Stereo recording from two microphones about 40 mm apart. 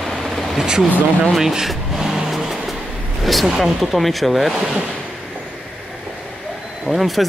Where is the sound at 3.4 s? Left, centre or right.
Centre.